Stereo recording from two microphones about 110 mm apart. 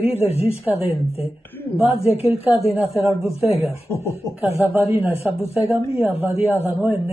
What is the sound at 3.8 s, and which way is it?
Speech, 25° left (ahead or behind).